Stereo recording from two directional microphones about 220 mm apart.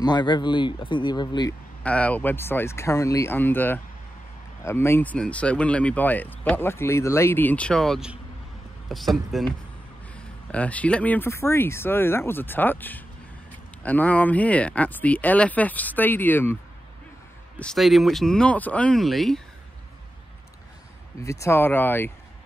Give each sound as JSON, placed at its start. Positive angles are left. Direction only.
{"t": 0.0, "sound": "speech", "side_deg": 20}
{"t": 1.8, "sound": "speech", "side_deg": 5}
{"t": 17.6, "sound": "speech", "side_deg": 0}
{"t": 21.2, "sound": "speech", "side_deg": 15}